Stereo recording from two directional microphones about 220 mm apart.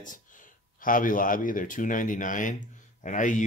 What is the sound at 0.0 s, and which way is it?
Speech, 35° left (ahead or behind).